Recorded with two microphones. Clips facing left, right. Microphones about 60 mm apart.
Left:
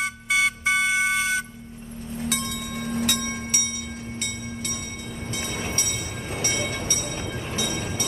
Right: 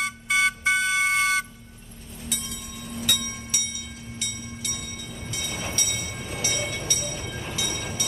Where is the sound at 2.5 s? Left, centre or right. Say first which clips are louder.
Left 8 dB; left.